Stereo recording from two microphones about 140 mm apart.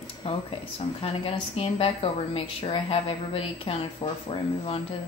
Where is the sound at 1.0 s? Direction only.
40° left (ahead or behind).